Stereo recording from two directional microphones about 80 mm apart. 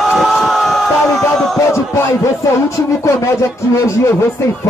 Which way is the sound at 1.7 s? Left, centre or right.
Left.